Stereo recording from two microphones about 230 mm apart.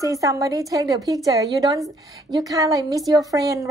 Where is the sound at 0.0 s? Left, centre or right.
Centre.